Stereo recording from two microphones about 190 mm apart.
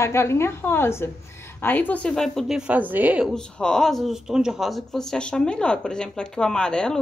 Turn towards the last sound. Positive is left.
turn(degrees=5)  # may be behind; listen again after turning